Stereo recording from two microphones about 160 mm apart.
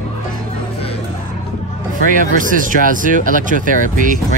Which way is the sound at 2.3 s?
55° right (ahead or behind).